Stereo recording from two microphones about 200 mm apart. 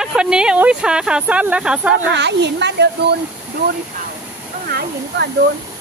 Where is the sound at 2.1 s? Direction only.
60° right (ahead or behind).